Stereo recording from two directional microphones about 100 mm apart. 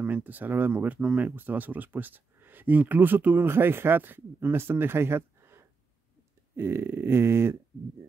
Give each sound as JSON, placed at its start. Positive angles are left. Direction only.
{"t": 0.0, "sound": "speech", "side_deg": -15}